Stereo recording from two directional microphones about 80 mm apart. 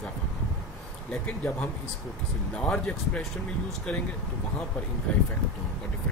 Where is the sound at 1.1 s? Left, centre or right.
Centre.